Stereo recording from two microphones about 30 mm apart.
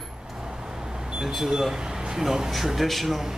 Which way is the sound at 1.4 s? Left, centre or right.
Centre.